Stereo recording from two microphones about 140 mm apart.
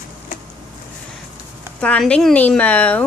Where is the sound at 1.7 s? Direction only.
5° left (ahead or behind).